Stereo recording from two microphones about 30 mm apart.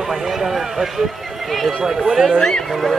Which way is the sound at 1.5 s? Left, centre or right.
Centre.